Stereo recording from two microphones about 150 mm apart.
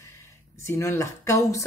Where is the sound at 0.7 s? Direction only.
20° left (ahead or behind).